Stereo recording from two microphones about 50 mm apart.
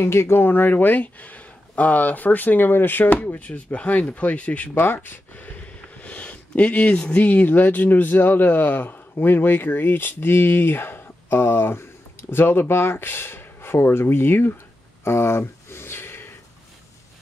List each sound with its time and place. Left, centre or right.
0.0 s speech: left
3.1 s speech: left
4.7 s speech: left
15.0 s a sound: left